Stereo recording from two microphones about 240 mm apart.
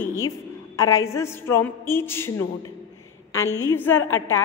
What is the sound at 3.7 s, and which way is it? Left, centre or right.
Speech, centre.